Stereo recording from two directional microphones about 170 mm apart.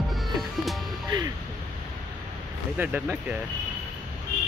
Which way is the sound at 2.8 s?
10° right (ahead or behind).